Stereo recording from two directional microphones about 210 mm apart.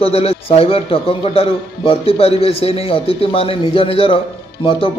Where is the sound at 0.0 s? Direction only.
30° left (ahead or behind).